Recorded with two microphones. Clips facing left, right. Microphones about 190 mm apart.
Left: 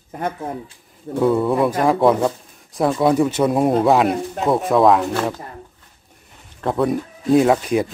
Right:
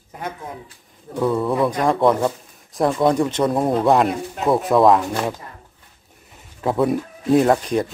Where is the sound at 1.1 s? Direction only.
5° left (ahead or behind).